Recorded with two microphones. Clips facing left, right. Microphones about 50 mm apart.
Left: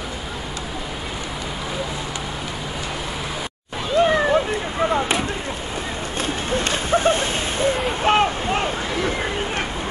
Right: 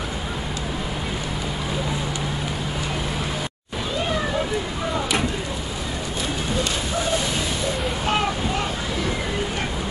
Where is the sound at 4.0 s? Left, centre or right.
Left.